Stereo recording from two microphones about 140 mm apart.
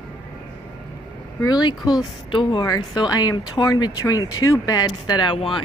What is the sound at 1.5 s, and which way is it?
Speech, 30° left (ahead or behind).